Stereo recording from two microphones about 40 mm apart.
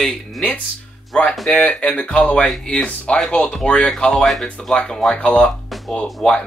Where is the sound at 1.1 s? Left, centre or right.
Left.